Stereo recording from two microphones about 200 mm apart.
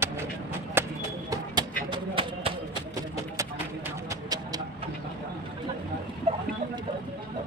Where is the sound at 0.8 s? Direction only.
10° right (ahead or behind).